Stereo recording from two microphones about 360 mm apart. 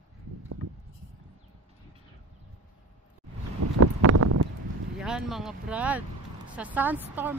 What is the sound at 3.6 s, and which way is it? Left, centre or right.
Wind, right.